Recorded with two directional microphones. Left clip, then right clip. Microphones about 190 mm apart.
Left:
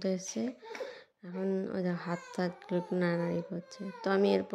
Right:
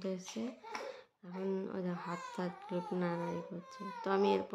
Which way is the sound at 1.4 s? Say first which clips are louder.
Left 5 dB; 20° left (ahead or behind).